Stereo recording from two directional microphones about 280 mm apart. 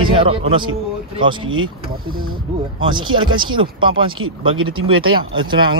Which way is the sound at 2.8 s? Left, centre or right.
Centre.